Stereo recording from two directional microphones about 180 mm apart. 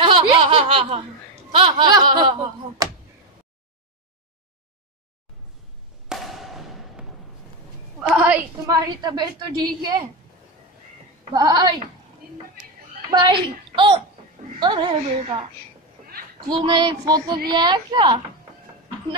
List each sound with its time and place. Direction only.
0.0 s a sound: 30° right (ahead or behind)
1.5 s a woman's voice: 30° right (ahead or behind)
6.0 s a sound: centre (ahead or behind)
8.1 s a woman's voice: 10° right (ahead or behind)
8.6 s a woman's voice: 20° right (ahead or behind)
11.3 s a woman's voice: 20° right (ahead or behind)
12.2 s a sound: 55° right (ahead or behind)
13.1 s a woman's voice: 25° right (ahead or behind)
16.4 s a woman's voice: 25° right (ahead or behind)